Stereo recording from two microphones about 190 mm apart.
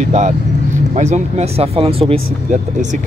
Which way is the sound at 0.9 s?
40° right (ahead or behind).